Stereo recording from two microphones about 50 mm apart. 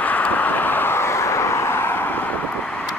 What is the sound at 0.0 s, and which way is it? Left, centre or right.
Vehicle, left.